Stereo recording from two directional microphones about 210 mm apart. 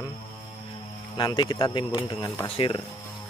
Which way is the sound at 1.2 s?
20° left (ahead or behind).